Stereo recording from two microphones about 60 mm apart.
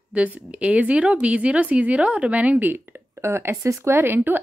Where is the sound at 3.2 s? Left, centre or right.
Right.